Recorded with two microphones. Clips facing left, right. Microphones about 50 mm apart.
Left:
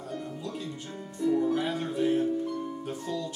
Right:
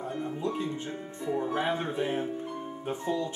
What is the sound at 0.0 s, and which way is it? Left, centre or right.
Music, right.